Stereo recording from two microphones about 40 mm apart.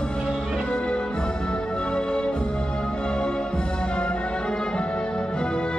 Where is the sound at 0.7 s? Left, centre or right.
Left.